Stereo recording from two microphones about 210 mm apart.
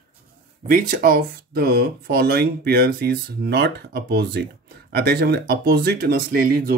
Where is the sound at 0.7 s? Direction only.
45° right (ahead or behind).